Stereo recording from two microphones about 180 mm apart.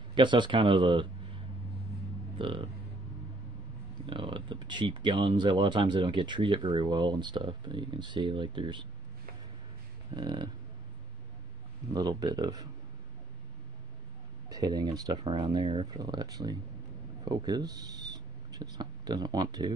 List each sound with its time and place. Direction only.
0.1 s a man's voice: 25° right (ahead or behind)
4.0 s speech: 30° right (ahead or behind)
10.1 s speech: 25° right (ahead or behind)
11.9 s speech: 20° right (ahead or behind)
14.5 s speech: 20° right (ahead or behind)